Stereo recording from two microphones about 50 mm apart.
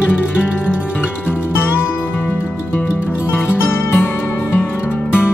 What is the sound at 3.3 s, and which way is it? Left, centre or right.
Music, left.